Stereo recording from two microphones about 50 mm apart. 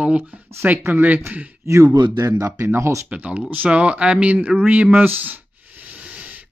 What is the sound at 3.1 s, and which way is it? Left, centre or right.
Speech, right.